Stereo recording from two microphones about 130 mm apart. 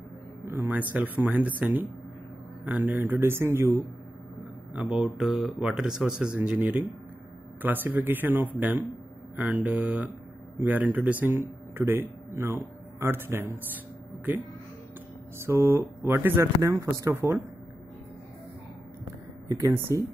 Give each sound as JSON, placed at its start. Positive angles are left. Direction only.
{"t": 0.5, "sound": "music", "side_deg": -15}
{"t": 0.9, "sound": "speech", "side_deg": -15}
{"t": 2.6, "sound": "speech", "side_deg": -15}
{"t": 4.7, "sound": "a man's voice", "side_deg": -10}
{"t": 15.3, "sound": "speech", "side_deg": -20}
{"t": 19.4, "sound": "speech", "side_deg": -25}